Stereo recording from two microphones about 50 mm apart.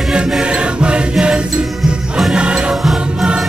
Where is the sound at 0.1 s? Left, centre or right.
Centre.